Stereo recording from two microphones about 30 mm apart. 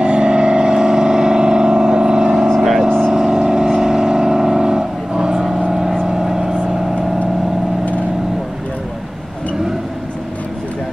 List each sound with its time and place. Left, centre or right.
0.0 s vehicle: right
2.5 s vehicle: centre
3.0 s vehicle: right
5.7 s vehicle: centre